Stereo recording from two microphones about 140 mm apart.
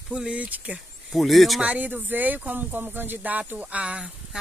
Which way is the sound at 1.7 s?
10° right (ahead or behind).